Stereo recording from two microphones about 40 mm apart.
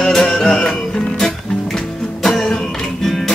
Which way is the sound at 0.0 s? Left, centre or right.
Centre.